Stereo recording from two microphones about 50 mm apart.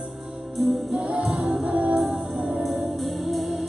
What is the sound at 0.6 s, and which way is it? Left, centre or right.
Music, centre.